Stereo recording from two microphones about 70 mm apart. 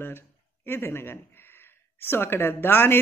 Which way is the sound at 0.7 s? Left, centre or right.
Left.